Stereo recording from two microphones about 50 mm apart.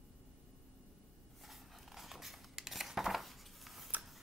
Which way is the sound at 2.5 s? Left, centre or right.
Centre.